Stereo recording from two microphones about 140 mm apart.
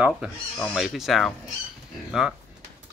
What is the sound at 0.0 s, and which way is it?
Speech, 5° right (ahead or behind).